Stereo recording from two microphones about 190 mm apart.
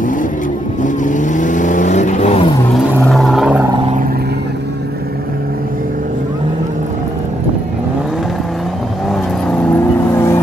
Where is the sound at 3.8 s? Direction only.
45° right (ahead or behind).